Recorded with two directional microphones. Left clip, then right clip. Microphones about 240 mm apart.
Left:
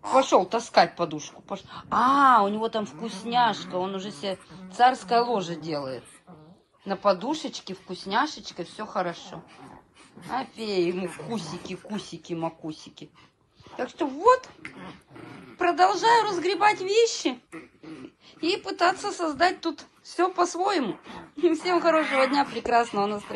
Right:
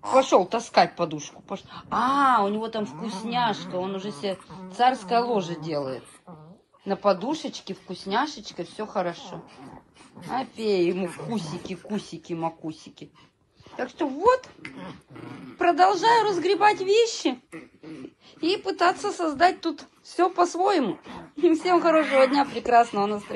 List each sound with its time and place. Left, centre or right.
0.0 s a woman's voice: centre
4.5 s a sound: right
4.7 s a woman's voice: centre
6.9 s a woman's voice: centre
10.3 s speech: centre
13.7 s a woman's voice: centre